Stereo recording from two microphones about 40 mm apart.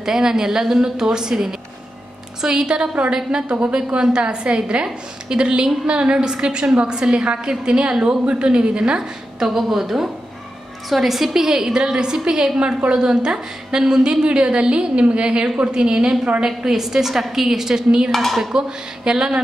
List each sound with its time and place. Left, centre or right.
0.0 s a woman's voice: centre
12.5 s a woman's voice: right
18.1 s dishes: centre
18.5 s a woman's voice: centre